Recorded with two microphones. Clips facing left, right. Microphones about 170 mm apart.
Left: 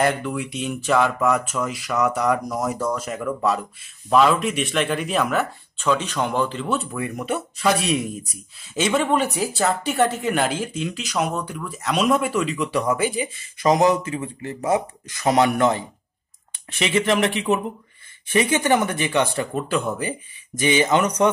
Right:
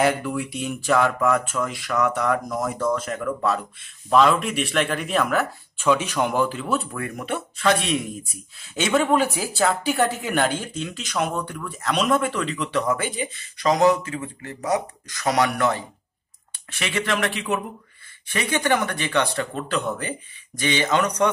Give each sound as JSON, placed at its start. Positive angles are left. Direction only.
{"t": 0.0, "sound": "a man's voice", "side_deg": -5}